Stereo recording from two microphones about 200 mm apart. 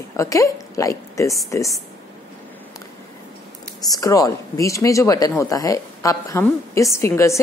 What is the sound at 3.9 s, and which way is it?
A woman's voice, 15° left (ahead or behind).